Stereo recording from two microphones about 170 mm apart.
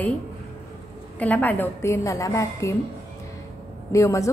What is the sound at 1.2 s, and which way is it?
A woman's voice, 10° left (ahead or behind).